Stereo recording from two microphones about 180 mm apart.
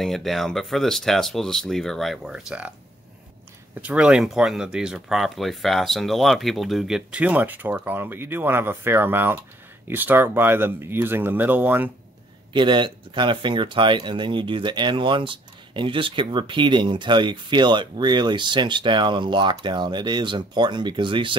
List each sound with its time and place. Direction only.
0.0 s speech: centre (ahead or behind)
3.8 s speech: 5° right (ahead or behind)
12.5 s speech: 25° right (ahead or behind)